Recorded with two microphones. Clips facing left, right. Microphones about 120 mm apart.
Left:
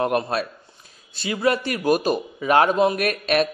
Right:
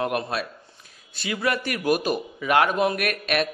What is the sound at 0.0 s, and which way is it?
Speech, 40° left (ahead or behind).